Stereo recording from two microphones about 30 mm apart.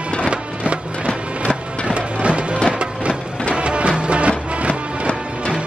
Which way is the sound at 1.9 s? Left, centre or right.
Right.